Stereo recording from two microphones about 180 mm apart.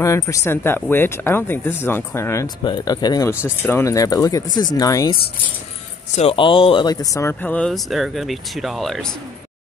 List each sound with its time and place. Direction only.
0.0 s speech: 15° left (ahead or behind)
6.1 s speech: 30° left (ahead or behind); by 9.1 s centre (ahead or behind)